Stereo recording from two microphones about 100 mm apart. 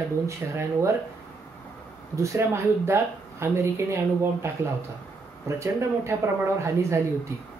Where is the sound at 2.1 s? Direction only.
30° right (ahead or behind).